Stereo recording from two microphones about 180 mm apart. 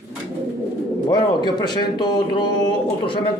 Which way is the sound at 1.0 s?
25° left (ahead or behind).